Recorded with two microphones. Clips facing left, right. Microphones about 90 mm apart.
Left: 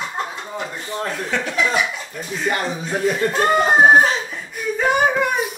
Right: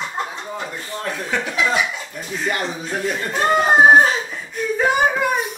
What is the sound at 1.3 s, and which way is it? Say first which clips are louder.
Speech: right 1 dB; 10° right (ahead or behind).